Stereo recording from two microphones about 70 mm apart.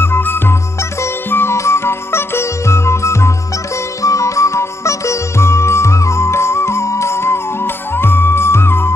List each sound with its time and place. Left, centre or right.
0.0 s music: left